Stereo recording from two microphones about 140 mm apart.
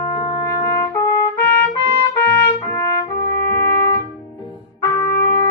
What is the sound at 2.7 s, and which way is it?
Trumpet, 20° left (ahead or behind).